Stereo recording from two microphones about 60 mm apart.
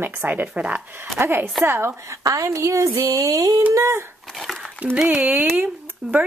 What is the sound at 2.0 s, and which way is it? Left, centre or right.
Speech, right.